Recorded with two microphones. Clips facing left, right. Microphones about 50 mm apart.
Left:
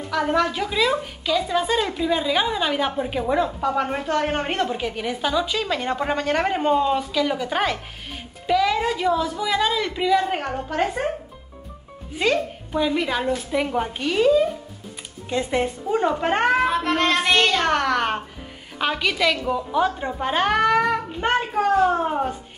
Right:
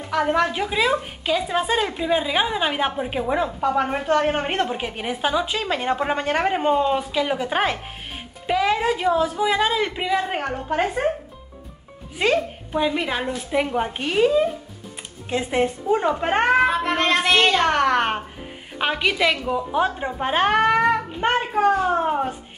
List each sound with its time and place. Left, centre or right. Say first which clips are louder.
0.1 s a woman's voice: right 1 dB; centre
1.2 s a woman's voice: left 2 dB; right
5.9 s a woman's voice: right 2 dB; centre
12.2 s a woman's voice: right 1 dB; right
13.9 s a woman's voice: left 1 dB; right
20.8 s a child's voice: right 2 dB; centre